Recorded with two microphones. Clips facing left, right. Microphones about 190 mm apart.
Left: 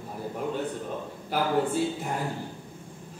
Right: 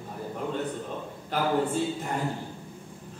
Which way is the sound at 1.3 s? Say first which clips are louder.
Left 1 dB; 10° left (ahead or behind).